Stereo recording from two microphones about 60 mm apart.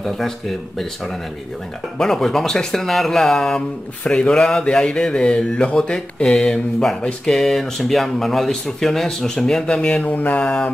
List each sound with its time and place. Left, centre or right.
2.0 s speech: centre
10.0 s mantra: left
10.4 s speech: centre